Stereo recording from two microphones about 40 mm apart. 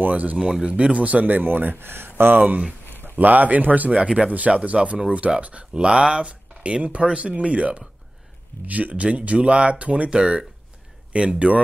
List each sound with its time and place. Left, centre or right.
0.0 s speech: right
0.5 s speech: centre
0.9 s a man's voice: right
10.1 s speech: right